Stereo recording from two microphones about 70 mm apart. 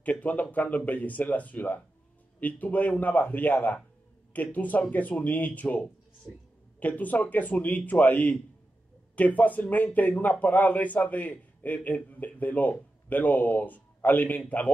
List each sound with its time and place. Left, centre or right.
0.0 s a man's voice: left